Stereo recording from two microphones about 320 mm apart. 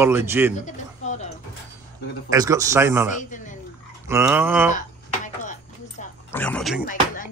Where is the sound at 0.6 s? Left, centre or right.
Left.